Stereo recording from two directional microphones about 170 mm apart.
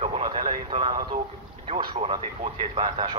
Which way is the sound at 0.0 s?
35° right (ahead or behind).